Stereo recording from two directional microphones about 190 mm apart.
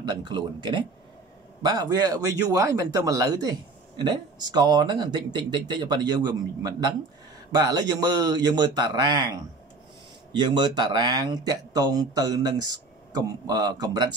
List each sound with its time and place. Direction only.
0.0 s speech: 20° right (ahead or behind)